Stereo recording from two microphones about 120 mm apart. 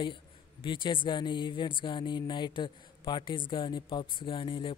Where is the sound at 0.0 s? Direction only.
45° left (ahead or behind).